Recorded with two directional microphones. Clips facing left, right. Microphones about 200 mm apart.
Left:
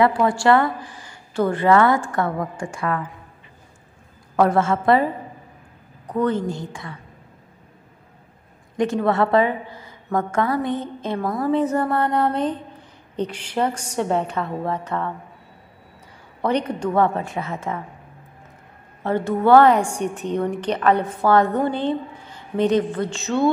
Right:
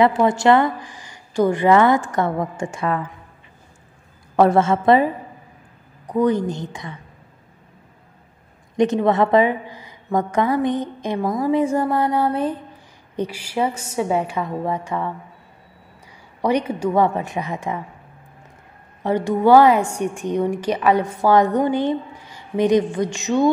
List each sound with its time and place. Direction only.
0.0 s a woman's voice: 20° right (ahead or behind)
4.4 s a woman's voice: 25° right (ahead or behind)
6.0 s a woman's voice: 15° right (ahead or behind)
8.7 s a woman's voice: 20° right (ahead or behind)
16.3 s a woman's voice: 10° right (ahead or behind)
19.0 s a woman's voice: 15° right (ahead or behind)